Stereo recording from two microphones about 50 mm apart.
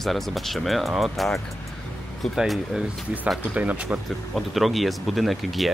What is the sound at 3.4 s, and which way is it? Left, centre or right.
Speech, right.